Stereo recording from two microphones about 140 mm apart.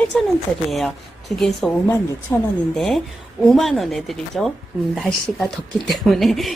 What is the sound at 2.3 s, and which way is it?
Speech, 20° left (ahead or behind).